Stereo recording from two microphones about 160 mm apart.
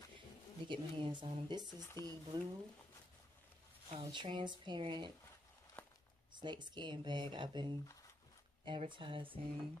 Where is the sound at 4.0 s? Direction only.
30° right (ahead or behind).